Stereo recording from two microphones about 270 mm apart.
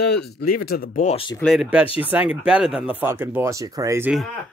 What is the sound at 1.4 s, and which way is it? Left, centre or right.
Speech, centre.